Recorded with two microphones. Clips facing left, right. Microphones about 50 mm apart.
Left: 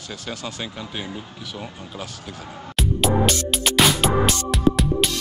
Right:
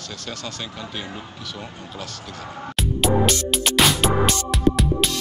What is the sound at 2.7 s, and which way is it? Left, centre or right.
Music, centre.